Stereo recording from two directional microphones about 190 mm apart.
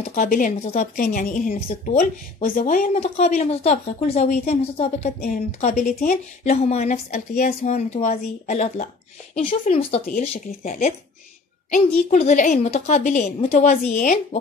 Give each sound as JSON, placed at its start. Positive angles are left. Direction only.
{"t": 0.0, "sound": "a woman's voice", "side_deg": 45}